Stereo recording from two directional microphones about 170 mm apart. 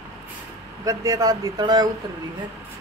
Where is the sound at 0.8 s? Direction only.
20° right (ahead or behind).